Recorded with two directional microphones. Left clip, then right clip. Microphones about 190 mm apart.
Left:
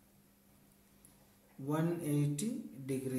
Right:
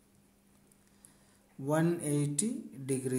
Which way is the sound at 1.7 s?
35° right (ahead or behind).